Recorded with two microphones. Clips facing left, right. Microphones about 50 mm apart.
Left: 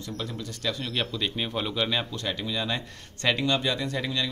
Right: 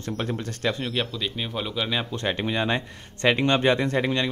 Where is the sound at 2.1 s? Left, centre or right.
Right.